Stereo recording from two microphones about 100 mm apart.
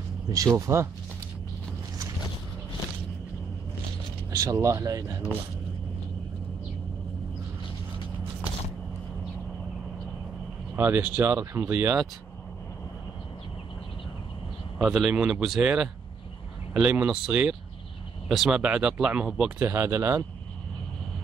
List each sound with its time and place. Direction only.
0.6 s speech: 30° right (ahead or behind)
4.4 s speech: 35° right (ahead or behind)
10.8 s speech: 20° right (ahead or behind)
14.8 s a man's voice: 5° right (ahead or behind)
19.6 s speech: 25° right (ahead or behind)